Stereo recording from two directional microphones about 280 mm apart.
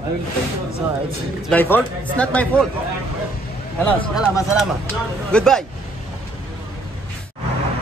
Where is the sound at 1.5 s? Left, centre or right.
Centre.